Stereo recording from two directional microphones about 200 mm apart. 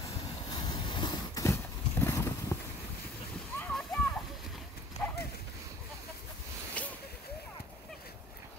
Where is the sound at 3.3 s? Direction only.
5° left (ahead or behind).